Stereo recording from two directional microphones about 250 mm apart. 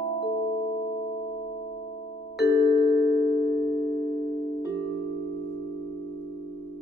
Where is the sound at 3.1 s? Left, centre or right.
Left.